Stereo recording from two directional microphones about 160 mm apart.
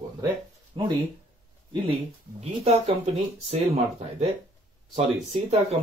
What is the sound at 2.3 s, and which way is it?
Speech, 40° right (ahead or behind).